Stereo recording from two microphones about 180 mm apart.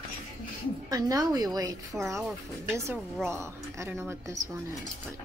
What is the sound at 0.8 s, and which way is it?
A woman's voice, 20° right (ahead or behind).